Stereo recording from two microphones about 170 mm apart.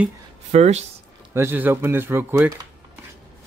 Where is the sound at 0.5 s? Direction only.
40° right (ahead or behind).